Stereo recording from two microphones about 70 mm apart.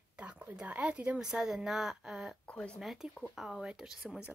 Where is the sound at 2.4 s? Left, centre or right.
Centre.